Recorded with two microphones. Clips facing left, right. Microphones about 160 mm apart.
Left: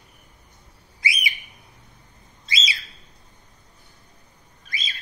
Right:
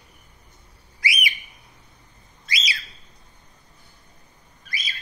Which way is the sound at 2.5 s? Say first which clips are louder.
Even; 25° left (ahead or behind).